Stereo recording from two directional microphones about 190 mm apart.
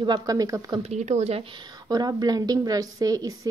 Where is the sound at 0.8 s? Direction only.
35° right (ahead or behind).